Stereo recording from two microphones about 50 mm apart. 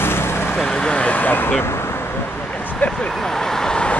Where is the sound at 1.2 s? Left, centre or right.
Left.